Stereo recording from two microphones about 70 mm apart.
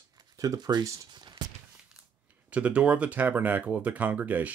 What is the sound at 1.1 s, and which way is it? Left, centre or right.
Speech, right.